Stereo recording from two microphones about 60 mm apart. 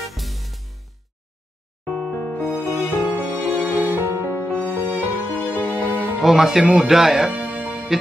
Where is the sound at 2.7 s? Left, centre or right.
Right.